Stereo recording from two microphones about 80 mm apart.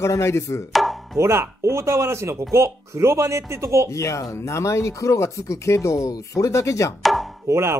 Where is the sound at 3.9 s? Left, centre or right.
Left.